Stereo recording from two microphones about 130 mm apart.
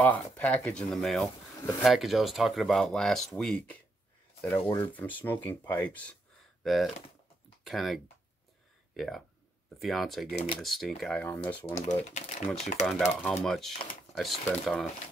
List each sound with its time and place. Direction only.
0.0 s speech: 10° left (ahead or behind)
4.7 s speech: 15° left (ahead or behind)
6.6 s speech: centre (ahead or behind)
11.2 s speech: 20° left (ahead or behind)
11.6 s speech: 55° left (ahead or behind)
12.8 s speech: 5° left (ahead or behind)